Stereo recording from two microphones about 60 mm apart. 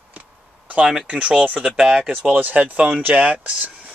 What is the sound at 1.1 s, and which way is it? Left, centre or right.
Speech, centre.